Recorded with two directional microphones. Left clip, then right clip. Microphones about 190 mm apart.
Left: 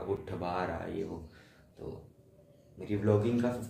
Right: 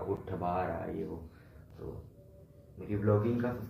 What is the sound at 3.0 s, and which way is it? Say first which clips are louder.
Speech: left 1 dB; 15° left (ahead or behind).